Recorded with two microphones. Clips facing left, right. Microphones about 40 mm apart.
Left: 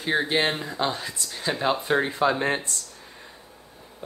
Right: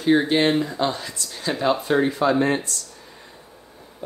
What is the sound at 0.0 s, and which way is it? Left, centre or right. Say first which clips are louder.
Speech: right 5 dB; centre.